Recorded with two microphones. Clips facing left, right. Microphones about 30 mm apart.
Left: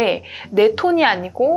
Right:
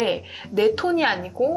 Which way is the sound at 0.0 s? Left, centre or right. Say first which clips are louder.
Left 5 dB; centre.